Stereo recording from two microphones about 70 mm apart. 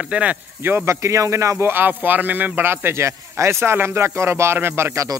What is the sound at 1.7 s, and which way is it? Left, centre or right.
Speech, right.